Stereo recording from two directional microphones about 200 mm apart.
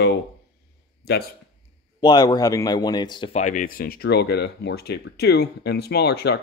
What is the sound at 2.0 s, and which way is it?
Speech, 20° left (ahead or behind).